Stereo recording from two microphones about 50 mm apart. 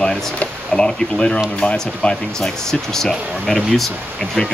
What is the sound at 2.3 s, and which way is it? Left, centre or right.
Speech, centre.